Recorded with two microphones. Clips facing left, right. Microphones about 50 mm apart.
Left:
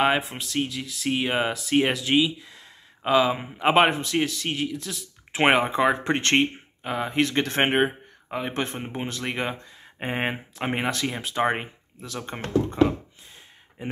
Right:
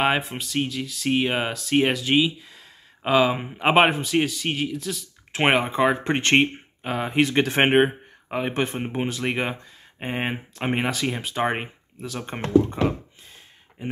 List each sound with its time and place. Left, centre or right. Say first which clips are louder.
0.0 s speech: even; centre
6.3 s a sound: right 3 dB; centre
6.9 s speech: right 2 dB; centre
9.9 s speech: even; centre
10.3 s speech: right 2 dB; centre